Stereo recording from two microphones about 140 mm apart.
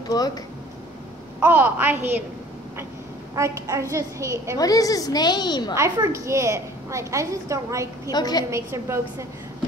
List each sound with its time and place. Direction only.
0.1 s a woman's voice: 25° left (ahead or behind)
1.4 s a woman's voice: 15° right (ahead or behind)
3.3 s a woman's voice: 20° right (ahead or behind)
4.6 s a woman's voice: 25° left (ahead or behind)
5.8 s a woman's voice: 20° right (ahead or behind)
8.1 s a woman's voice: 30° left (ahead or behind)
8.5 s a woman's voice: 20° right (ahead or behind)